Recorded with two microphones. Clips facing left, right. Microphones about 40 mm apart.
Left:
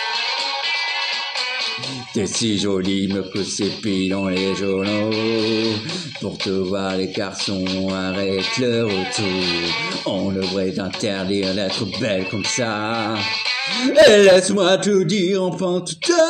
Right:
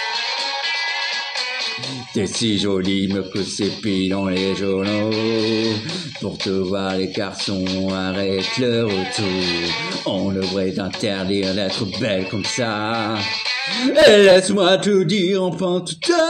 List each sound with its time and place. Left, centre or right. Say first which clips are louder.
0.7 s music: even; left
2.1 s speech: right 1 dB; centre
4.8 s music: even; left
8.0 s speech: even; centre
8.8 s music: even; left
10.0 s speech: right 2 dB; right
11.6 s speech: even; centre